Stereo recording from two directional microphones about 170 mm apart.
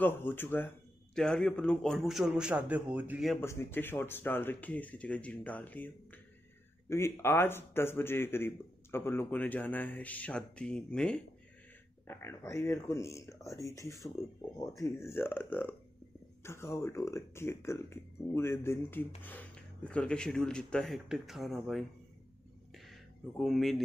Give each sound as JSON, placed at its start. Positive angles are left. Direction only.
{"t": 0.0, "sound": "a man's voice", "side_deg": 15}
{"t": 3.3, "sound": "speech", "side_deg": 15}
{"t": 6.9, "sound": "speech", "side_deg": 15}
{"t": 22.8, "sound": "a sound", "side_deg": 0}